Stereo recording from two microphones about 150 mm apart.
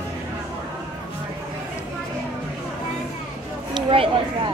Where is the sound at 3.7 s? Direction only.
35° right (ahead or behind).